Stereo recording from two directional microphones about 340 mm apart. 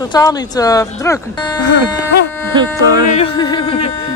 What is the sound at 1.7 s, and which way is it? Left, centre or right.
Speech, left.